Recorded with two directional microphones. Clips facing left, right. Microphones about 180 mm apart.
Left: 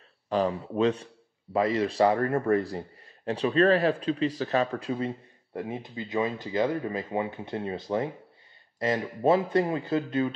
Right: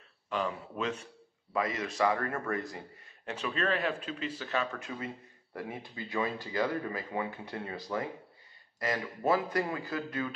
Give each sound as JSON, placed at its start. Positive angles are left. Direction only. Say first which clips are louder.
{"t": 0.3, "sound": "speech", "louder": "left 8 dB", "side_deg": 35}